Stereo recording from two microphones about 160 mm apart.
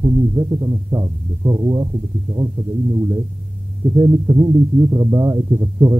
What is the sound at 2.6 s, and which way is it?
Speech, 35° right (ahead or behind).